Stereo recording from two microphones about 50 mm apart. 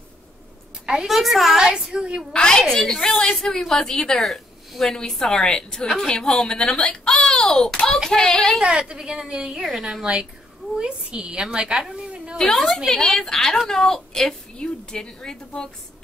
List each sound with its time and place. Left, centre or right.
1.0 s a woman's voice: centre
1.6 s a woman's voice: centre
2.3 s a woman's voice: centre
8.5 s a woman's voice: right
10.8 s a woman's voice: centre
12.4 s a woman's voice: centre